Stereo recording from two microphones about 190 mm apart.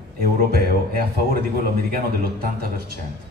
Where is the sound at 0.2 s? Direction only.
50° right (ahead or behind).